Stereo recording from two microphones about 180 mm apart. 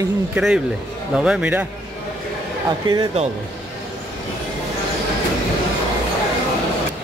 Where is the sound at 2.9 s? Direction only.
30° right (ahead or behind).